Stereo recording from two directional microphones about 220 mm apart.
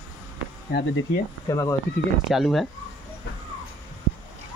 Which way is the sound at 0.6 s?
45° left (ahead or behind).